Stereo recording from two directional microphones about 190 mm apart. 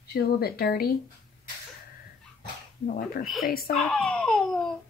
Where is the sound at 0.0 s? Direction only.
55° left (ahead or behind).